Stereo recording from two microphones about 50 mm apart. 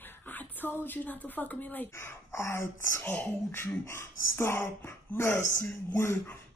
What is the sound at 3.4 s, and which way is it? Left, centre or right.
Speech, left.